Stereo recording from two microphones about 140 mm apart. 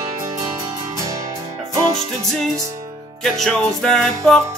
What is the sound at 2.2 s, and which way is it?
Music, 5° left (ahead or behind).